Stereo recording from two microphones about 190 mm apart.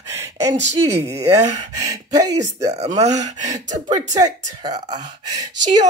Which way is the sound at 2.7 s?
35° right (ahead or behind).